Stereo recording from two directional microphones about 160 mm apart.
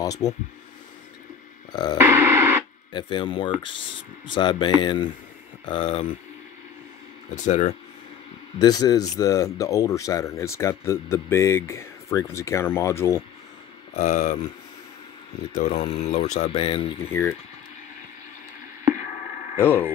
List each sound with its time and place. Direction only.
0.0 s speech: 20° left (ahead or behind)
1.7 s music: 25° left (ahead or behind)
2.0 s radio: 15° right (ahead or behind)
2.9 s speech: 30° left (ahead or behind)
7.4 s speech: 50° left (ahead or behind)
8.5 s speech: 25° left (ahead or behind)
13.9 s speech: 45° left (ahead or behind)
15.5 s speech: 45° left (ahead or behind)
17.1 s speech: 15° left (ahead or behind)
19.6 s speech: 15° left (ahead or behind)